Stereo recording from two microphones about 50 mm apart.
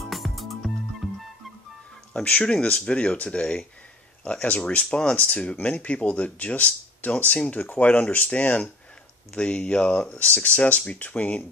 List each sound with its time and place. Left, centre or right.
0.0 s music: centre
2.2 s speech: left